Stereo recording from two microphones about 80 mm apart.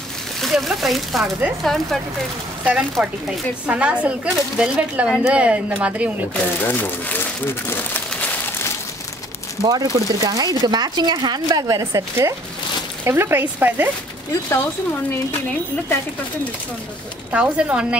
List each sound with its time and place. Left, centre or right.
0.4 s speech: centre
2.6 s speech: centre
6.6 s speech: left
9.6 s speech: right
11.5 s speech: right
17.3 s speech: centre